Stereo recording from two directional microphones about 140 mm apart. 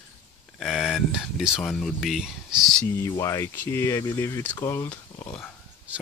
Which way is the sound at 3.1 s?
20° left (ahead or behind).